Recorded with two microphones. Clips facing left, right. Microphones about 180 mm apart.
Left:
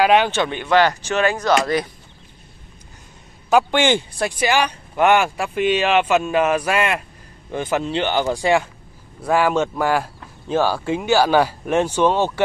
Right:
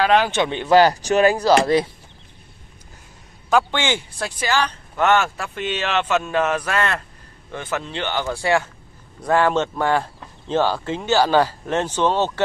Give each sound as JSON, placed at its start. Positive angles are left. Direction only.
{"t": 0.0, "sound": "speech", "side_deg": 5}
{"t": 0.3, "sound": "speech", "side_deg": -20}
{"t": 0.7, "sound": "speech", "side_deg": -35}
{"t": 3.4, "sound": "speech", "side_deg": 10}